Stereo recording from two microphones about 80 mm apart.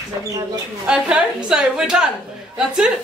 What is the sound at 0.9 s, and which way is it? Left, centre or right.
A woman's voice, centre.